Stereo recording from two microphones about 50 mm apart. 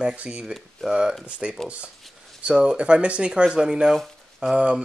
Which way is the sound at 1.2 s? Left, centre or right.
Right.